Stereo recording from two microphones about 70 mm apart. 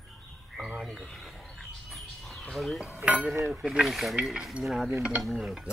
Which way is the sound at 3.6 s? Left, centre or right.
Centre.